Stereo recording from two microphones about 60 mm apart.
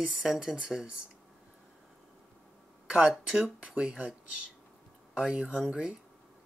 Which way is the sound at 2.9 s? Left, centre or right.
Centre.